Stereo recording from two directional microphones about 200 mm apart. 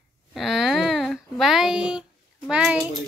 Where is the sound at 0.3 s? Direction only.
Centre (ahead or behind).